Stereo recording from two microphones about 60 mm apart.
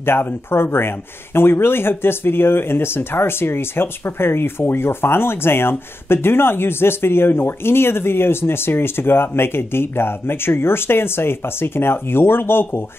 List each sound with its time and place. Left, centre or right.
0.0 s speech: left